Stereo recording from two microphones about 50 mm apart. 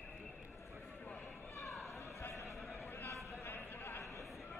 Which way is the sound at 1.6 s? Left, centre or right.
Centre.